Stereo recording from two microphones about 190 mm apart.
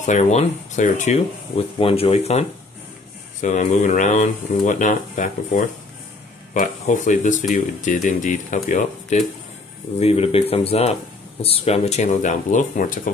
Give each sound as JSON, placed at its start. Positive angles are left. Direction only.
{"t": 0.0, "sound": "speech", "side_deg": 40}